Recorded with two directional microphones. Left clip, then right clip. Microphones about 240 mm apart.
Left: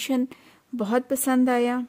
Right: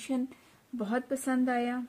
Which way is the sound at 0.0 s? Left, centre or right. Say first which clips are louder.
Left 8 dB; left.